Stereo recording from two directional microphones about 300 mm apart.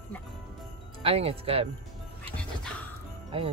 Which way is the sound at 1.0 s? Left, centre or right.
Centre.